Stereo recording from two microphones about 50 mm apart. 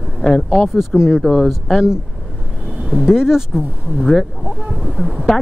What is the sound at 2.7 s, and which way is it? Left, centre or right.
Speech, centre.